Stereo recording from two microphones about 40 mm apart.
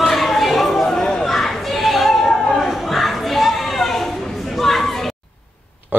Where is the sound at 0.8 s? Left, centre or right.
Centre.